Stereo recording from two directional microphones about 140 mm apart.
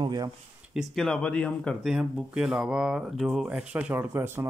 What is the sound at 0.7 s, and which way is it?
Speech, centre (ahead or behind).